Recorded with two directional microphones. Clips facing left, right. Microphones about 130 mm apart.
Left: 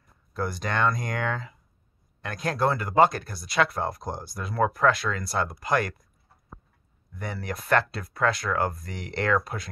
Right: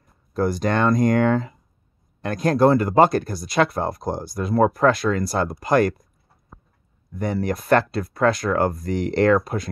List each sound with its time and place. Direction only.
0.4 s speech: 40° right (ahead or behind)
7.2 s speech: 40° right (ahead or behind)